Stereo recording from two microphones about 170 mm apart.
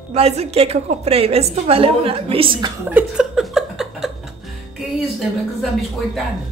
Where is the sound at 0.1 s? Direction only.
40° right (ahead or behind).